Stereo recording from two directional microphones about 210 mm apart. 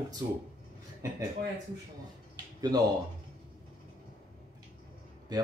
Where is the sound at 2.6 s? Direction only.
20° right (ahead or behind).